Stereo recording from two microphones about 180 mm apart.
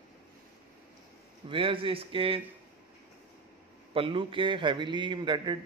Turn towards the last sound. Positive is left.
turn(degrees=-25)  # may be behind; listen again after turning